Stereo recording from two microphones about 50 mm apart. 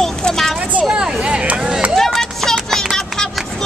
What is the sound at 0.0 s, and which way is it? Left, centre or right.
Children playing, centre.